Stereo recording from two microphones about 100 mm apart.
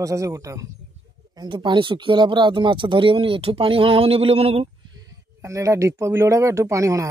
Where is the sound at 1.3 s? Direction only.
50° right (ahead or behind); by 4.7 s 90° right.